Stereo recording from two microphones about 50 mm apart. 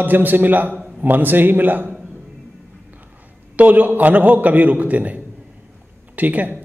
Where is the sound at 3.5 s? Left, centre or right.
Right.